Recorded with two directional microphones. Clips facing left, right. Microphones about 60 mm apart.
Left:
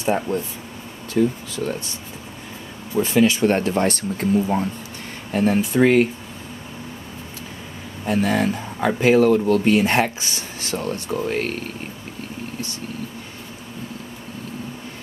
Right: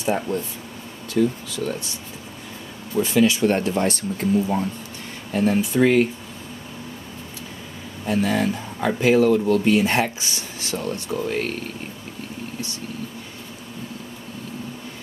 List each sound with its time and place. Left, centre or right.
0.0 s speech: left
3.0 s speech: left
8.0 s speech: left